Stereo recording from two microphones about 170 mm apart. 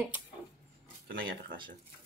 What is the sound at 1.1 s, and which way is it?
Speech, 60° right (ahead or behind).